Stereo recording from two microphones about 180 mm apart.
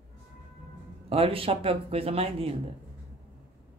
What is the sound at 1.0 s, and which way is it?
A man's voice, 30° right (ahead or behind).